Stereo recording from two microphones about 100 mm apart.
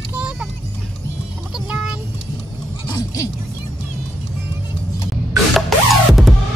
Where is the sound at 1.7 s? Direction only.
10° right (ahead or behind).